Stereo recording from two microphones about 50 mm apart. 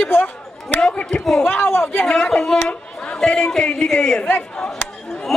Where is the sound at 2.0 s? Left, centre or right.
Centre.